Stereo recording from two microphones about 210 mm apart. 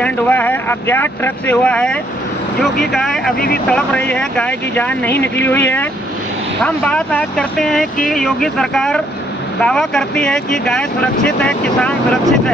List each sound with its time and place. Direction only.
0.0 s speech: 10° left (ahead or behind)